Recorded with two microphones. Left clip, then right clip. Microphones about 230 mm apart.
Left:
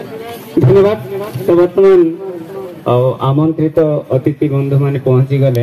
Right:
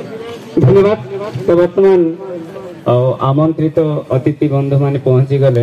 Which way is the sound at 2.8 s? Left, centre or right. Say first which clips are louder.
Even; left.